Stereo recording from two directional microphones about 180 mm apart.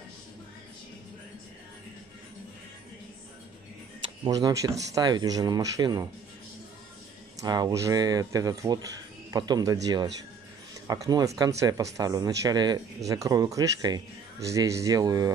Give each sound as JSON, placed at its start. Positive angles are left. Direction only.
{"t": 4.2, "sound": "speech", "side_deg": -20}
{"t": 7.3, "sound": "speech", "side_deg": -20}
{"t": 10.9, "sound": "speech", "side_deg": -20}